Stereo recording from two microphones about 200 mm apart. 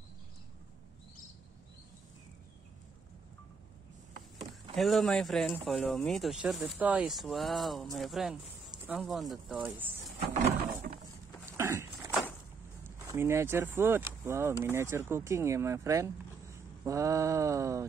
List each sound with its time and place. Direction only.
4.7 s speech: centre (ahead or behind)
11.4 s a sound: 15° right (ahead or behind)
12.8 s speech: 15° right (ahead or behind)